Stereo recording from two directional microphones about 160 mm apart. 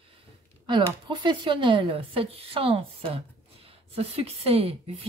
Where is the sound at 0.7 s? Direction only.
30° right (ahead or behind).